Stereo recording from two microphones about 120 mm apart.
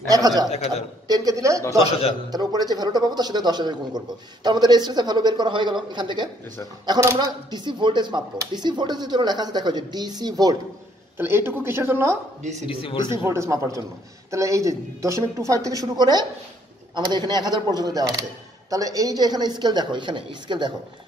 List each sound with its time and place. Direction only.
0.1 s speech: 30° right (ahead or behind)
0.5 s a man's voice: 60° left (ahead or behind)
1.0 s a sound: 30° right (ahead or behind)
2.3 s speech: 35° right (ahead or behind)
11.1 s speech: 20° right (ahead or behind)
12.6 s speech: 45° left (ahead or behind)
13.2 s speech: 20° right (ahead or behind); by 20.7 s 40° right (ahead or behind)